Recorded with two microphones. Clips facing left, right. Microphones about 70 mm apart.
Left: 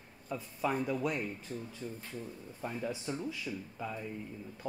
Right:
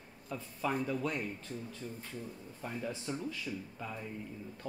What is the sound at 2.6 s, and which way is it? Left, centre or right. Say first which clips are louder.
Speech: left 2 dB; centre.